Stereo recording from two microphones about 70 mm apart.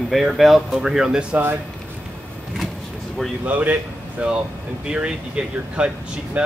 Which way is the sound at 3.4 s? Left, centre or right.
Right.